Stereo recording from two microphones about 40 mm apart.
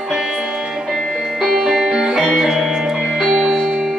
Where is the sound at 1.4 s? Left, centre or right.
Centre.